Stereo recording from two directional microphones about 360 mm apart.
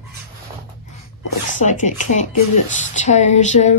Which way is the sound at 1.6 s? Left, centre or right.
Centre.